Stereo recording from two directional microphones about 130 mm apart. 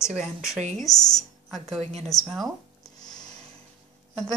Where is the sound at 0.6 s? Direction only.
65° right (ahead or behind).